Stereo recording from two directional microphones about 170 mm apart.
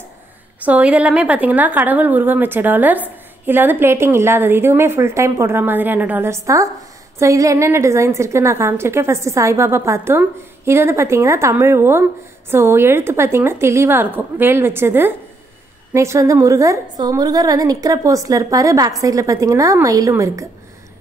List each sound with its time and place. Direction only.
0.7 s a woman's voice: 10° right (ahead or behind)